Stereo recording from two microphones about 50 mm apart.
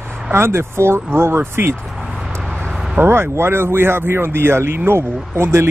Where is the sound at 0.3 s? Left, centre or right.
Right.